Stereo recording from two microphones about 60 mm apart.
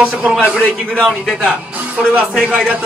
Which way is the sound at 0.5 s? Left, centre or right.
Centre.